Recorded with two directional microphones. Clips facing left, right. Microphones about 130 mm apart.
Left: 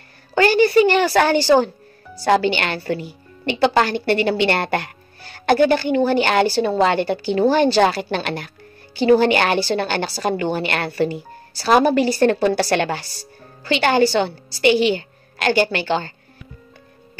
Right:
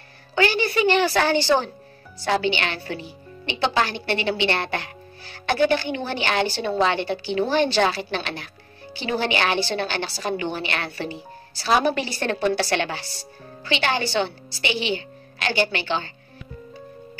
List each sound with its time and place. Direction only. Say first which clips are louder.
0.3 s a woman's voice: left 7 dB; 45° left (ahead or behind)